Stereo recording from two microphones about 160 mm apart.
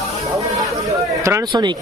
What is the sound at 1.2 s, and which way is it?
Speech, 20° right (ahead or behind).